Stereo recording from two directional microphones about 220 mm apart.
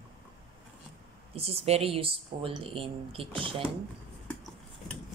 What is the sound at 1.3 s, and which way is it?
Speech, 25° right (ahead or behind).